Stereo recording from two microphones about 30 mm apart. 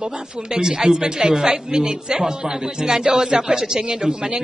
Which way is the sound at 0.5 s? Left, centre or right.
Right.